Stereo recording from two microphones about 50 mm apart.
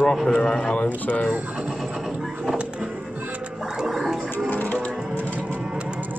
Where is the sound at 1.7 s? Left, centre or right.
Centre.